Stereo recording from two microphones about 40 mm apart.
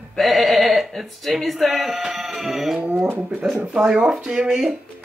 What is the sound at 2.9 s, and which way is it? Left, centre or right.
Speech, right.